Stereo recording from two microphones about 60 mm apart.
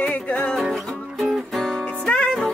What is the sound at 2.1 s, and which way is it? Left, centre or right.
Music, centre.